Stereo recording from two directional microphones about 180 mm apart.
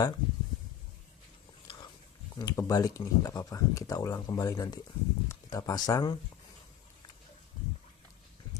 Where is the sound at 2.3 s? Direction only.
20° left (ahead or behind).